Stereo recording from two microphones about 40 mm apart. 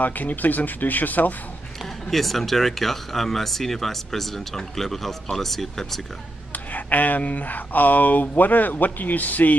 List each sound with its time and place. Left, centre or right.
0.0 s speech: left
1.8 s speech: centre
6.5 s speech: left